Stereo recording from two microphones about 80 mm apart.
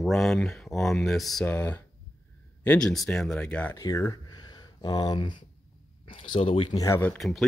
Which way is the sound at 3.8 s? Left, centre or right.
Left.